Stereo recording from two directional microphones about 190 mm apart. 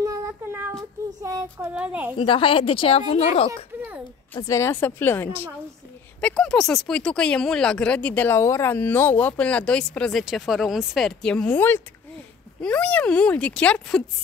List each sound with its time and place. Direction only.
0.0 s child singing: 15° right (ahead or behind)
1.2 s speech: 15° right (ahead or behind)
2.1 s speech: 25° left (ahead or behind)
4.4 s speech: 15° left (ahead or behind)